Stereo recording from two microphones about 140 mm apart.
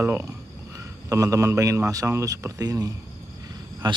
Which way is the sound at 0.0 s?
15° right (ahead or behind).